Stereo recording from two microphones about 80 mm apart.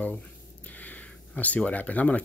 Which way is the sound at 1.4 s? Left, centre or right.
Centre.